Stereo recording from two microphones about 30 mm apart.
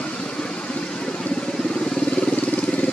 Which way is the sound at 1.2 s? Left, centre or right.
Left.